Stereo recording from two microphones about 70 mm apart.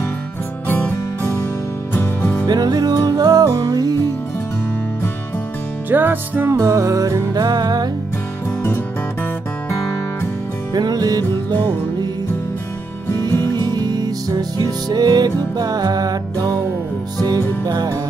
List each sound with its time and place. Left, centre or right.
0.7 s music: left
2.4 s music: right
5.9 s music: right
6.5 s music: right
10.7 s music: right
13.3 s music: left
13.6 s music: right
17.6 s music: right